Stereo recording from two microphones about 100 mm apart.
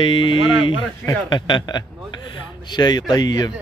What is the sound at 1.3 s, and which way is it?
A man's voice, 55° left (ahead or behind).